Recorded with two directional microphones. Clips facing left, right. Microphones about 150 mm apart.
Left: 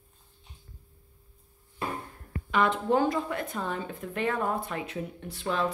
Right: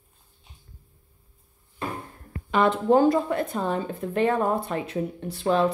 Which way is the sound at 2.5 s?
35° right (ahead or behind).